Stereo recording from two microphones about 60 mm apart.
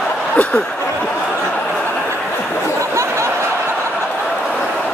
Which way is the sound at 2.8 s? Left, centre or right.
Right.